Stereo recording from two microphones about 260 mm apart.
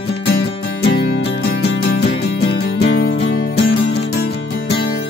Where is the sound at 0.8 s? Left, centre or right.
Left.